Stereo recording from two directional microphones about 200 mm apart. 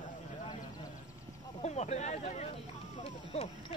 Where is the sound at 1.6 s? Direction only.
35° left (ahead or behind).